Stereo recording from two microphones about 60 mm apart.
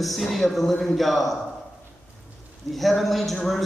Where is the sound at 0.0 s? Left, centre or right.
Centre.